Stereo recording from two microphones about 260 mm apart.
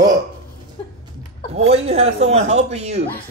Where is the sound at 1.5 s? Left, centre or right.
Right.